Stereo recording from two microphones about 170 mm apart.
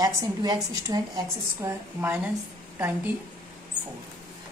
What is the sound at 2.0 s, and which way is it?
A woman's voice, 10° right (ahead or behind).